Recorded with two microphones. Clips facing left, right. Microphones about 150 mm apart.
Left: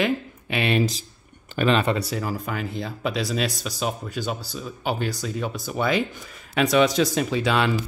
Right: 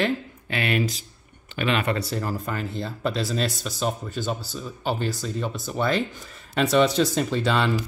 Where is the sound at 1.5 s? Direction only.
40° left (ahead or behind).